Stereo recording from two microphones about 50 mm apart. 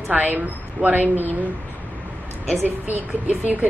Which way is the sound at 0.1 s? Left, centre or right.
Right.